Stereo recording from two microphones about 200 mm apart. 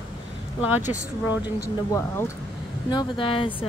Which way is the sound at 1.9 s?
15° left (ahead or behind).